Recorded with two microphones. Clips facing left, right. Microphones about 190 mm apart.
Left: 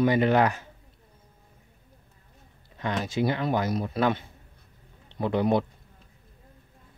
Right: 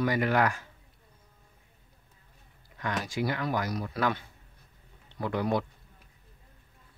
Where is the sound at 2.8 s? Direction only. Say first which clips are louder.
Left 4 dB; 25° left (ahead or behind).